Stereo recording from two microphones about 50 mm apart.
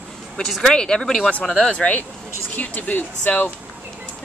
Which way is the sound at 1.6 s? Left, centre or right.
Left.